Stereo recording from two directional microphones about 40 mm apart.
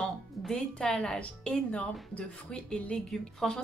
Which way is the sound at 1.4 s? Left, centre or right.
Left.